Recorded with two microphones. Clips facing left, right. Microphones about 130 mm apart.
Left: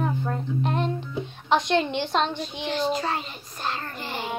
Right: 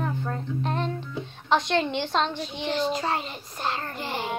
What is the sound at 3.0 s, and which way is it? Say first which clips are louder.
A child's voice: right 1 dB; 20° right (ahead or behind).